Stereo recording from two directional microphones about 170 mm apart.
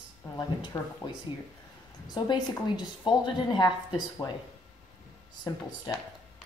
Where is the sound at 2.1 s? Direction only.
25° left (ahead or behind).